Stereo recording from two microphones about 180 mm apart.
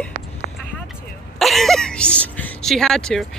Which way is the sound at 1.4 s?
Centre (ahead or behind).